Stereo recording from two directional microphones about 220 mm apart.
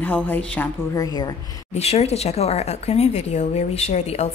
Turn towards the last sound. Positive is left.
turn(degrees=30)  # may be behind; listen again after turning